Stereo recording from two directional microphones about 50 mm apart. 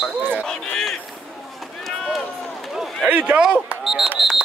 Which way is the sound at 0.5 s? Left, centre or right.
Centre.